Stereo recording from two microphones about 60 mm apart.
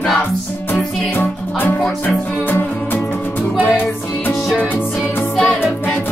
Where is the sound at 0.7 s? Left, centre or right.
Centre.